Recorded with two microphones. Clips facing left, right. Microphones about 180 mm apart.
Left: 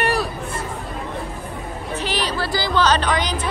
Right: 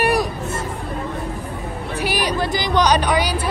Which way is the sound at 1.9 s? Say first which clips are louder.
Right 3 dB; 10° right (ahead or behind).